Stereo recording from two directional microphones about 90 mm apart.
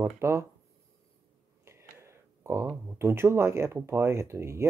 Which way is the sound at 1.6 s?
30° right (ahead or behind).